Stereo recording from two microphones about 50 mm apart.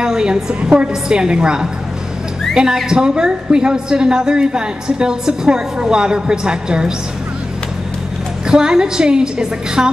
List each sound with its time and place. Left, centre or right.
0.0 s a woman's voice: centre
8.5 s a woman's voice: centre